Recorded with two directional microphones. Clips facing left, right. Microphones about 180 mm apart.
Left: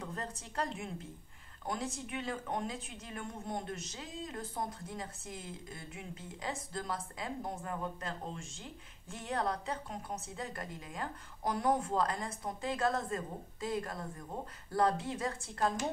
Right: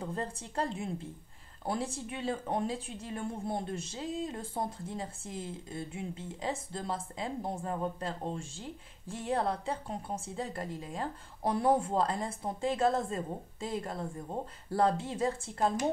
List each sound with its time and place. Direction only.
0.0 s speech: 30° right (ahead or behind)